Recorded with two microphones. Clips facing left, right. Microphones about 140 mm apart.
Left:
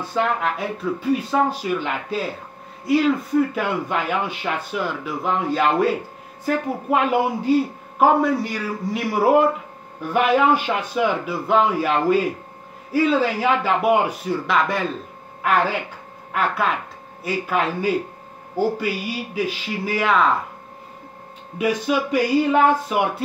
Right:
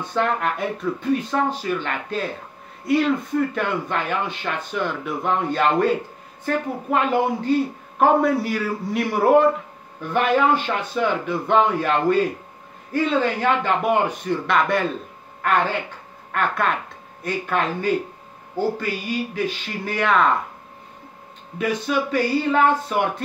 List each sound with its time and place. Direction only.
0.1 s a man's voice: 5° left (ahead or behind)
21.5 s a man's voice: 10° left (ahead or behind)